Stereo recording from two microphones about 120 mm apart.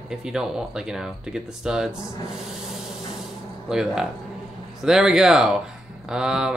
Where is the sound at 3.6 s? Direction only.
5° right (ahead or behind).